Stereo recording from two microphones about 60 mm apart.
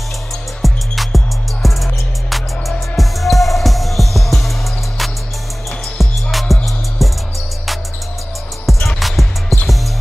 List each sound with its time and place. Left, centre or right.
0.6 s music: centre
8.8 s music: centre